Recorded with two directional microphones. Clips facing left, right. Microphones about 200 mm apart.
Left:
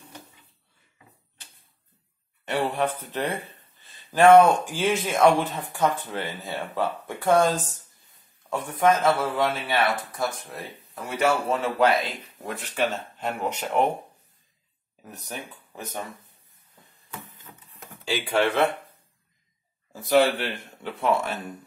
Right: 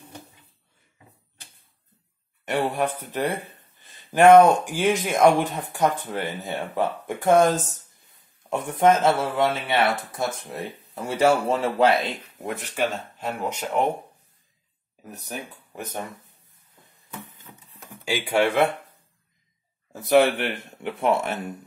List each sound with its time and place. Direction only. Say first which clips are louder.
2.4 s speech: right 1 dB; 10° right (ahead or behind)
3.8 s a sound: right 2 dB; 15° right (ahead or behind)
4.5 s speech: right 2 dB; 15° right (ahead or behind)
15.0 s speech: right 2 dB; 10° right (ahead or behind)
18.0 s speech: right 2 dB; 10° right (ahead or behind)
20.0 s speech: right 2 dB; 20° right (ahead or behind)